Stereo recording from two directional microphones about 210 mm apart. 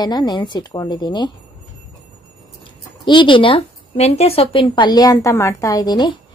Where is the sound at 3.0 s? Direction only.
25° left (ahead or behind).